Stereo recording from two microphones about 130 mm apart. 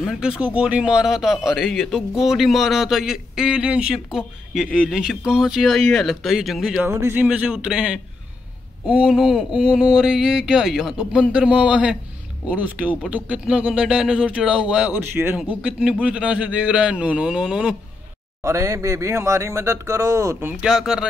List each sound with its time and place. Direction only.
0.0 s speech: centre (ahead or behind)
6.8 s speech: 20° right (ahead or behind)
7.2 s speech: 5° right (ahead or behind)
18.4 s speech: 25° right (ahead or behind)
20.7 s speech: 5° right (ahead or behind)